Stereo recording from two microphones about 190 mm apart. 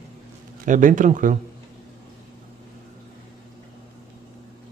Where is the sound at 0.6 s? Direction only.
45° right (ahead or behind).